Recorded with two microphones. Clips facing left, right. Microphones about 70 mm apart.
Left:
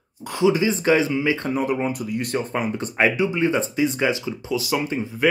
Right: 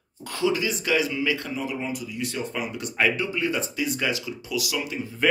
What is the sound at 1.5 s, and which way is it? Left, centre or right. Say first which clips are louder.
Speech: left 7 dB; left.